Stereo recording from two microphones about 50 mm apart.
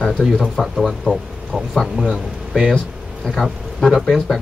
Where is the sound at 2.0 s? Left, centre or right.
Centre.